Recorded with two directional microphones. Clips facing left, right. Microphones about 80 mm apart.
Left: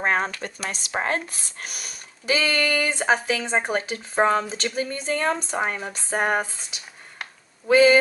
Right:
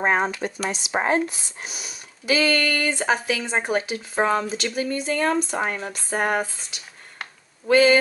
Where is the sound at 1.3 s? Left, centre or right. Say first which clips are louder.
Right 1 dB; left.